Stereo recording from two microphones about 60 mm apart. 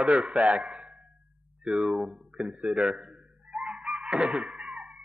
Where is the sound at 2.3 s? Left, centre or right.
Centre.